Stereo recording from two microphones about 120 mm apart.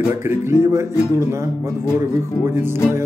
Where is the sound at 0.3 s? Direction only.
20° right (ahead or behind).